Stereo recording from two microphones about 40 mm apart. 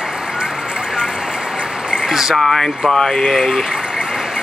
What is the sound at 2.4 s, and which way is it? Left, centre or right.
Speech, centre.